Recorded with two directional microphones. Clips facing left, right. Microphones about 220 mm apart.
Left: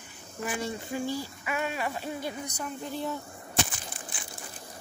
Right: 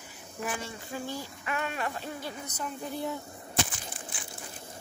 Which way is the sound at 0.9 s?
10° left (ahead or behind).